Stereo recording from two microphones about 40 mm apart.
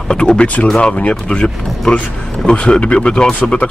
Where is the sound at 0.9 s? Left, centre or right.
Left.